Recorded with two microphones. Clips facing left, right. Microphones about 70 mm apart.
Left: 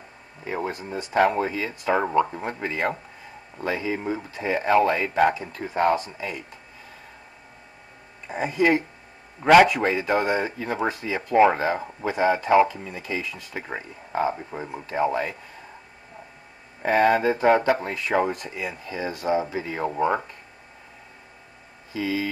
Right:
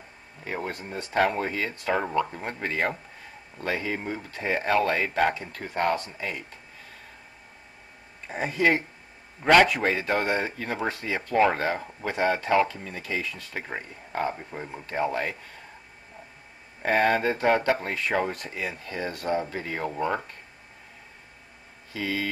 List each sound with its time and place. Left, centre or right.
0.5 s speech: centre
2.4 s speech: centre
8.3 s speech: centre
11.3 s speech: centre
16.8 s speech: centre
21.9 s speech: centre